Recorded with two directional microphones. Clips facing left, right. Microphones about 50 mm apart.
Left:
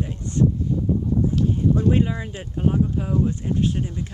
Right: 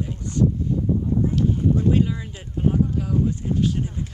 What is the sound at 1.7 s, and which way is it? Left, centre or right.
Speech, left.